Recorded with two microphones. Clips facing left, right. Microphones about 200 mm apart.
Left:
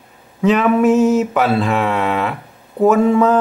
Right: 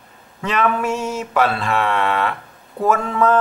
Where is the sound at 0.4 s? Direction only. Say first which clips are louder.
Left 7 dB; 5° left (ahead or behind).